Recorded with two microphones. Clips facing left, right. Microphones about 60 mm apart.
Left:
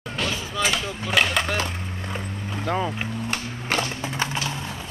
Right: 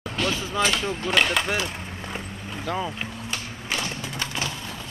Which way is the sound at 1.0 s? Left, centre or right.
Centre.